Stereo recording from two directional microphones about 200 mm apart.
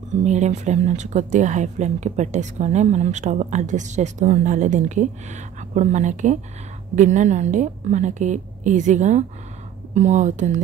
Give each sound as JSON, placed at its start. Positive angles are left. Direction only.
{"t": 0.1, "sound": "speech", "side_deg": -35}